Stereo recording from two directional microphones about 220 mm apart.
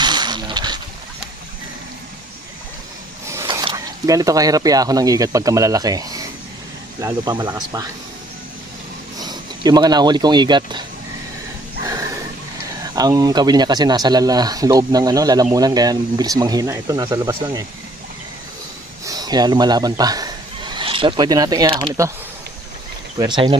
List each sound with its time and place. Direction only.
0.0 s a sound: 20° right (ahead or behind)
3.3 s speech: 15° right (ahead or behind)
9.2 s speech: 20° right (ahead or behind)
11.8 s a sound: 15° right (ahead or behind)
12.9 s speech: 15° right (ahead or behind)
19.0 s a man's voice: 20° right (ahead or behind)
23.1 s speech: 20° right (ahead or behind)